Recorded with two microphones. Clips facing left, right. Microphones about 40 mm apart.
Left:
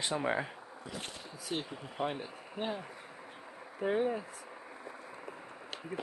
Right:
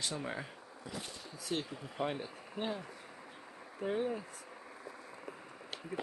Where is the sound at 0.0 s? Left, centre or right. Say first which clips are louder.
Left 7 dB; left.